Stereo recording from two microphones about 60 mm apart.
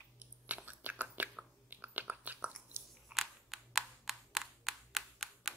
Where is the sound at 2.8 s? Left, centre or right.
Right.